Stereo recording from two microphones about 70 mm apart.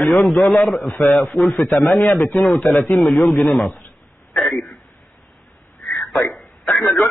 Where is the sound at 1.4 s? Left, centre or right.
Left.